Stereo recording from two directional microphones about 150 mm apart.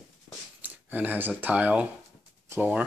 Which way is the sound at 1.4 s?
10° right (ahead or behind).